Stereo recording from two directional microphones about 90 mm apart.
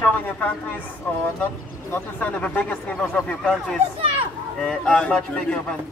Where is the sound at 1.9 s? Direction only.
15° left (ahead or behind).